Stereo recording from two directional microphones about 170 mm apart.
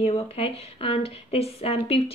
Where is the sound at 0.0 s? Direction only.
35° left (ahead or behind).